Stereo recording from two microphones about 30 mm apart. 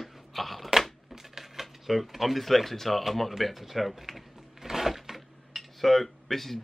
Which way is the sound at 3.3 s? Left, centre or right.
Centre.